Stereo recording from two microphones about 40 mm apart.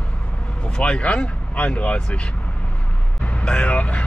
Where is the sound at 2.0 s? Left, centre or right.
Left.